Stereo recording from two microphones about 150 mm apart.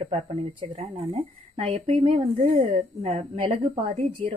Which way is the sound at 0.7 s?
40° right (ahead or behind).